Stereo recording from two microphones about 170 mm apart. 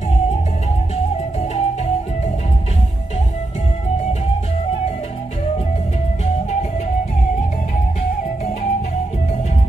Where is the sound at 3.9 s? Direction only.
35° left (ahead or behind).